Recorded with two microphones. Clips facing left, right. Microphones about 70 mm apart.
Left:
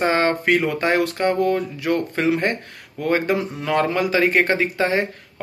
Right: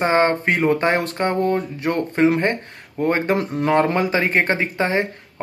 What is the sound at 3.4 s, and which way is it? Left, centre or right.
Speech, right.